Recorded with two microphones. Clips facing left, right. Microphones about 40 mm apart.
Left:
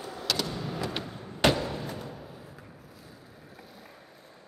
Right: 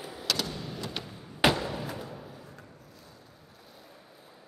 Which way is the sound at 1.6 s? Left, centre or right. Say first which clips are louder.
Even; centre.